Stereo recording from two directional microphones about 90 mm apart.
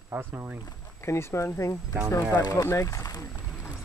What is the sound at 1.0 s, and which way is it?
Speech, 30° left (ahead or behind).